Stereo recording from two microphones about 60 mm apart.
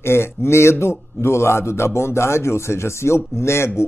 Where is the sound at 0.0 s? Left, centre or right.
Left.